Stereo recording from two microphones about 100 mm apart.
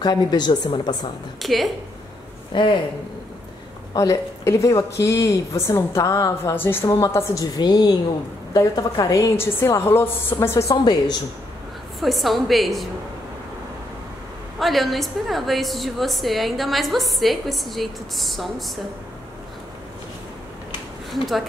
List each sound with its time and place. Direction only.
0.0 s a woman's voice: 45° left (ahead or behind)
1.4 s a woman's voice: centre (ahead or behind)
2.5 s speech: 55° left (ahead or behind)
3.9 s a woman's voice: 35° left (ahead or behind)
7.5 s a woman's voice: 45° left (ahead or behind)
9.4 s a woman's voice: 25° left (ahead or behind)
10.8 s a woman's voice: 45° left (ahead or behind)
12.0 s a woman's voice: centre (ahead or behind)
14.6 s a woman's voice: centre (ahead or behind)
21.1 s speech: centre (ahead or behind)